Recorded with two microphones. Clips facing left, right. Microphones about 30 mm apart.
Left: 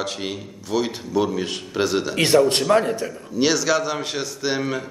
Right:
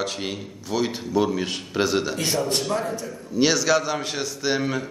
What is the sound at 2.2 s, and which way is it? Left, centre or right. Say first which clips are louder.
Speech: left 7 dB; left.